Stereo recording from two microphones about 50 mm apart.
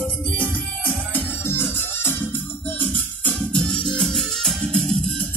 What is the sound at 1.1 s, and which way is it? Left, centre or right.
Music, left.